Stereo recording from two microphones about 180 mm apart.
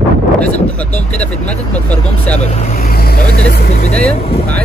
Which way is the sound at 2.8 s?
55° left (ahead or behind).